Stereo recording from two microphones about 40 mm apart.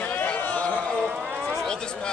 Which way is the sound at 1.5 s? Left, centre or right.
Left.